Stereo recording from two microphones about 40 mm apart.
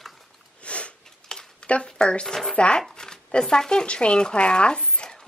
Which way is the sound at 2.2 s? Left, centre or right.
Centre.